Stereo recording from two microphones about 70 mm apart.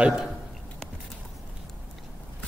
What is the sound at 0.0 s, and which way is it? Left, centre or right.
Speech, centre.